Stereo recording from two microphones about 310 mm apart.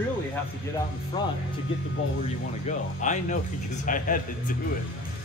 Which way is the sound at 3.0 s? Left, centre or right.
Left.